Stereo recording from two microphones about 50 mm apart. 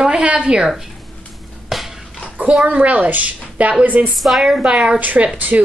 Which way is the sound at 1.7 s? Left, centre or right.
Centre.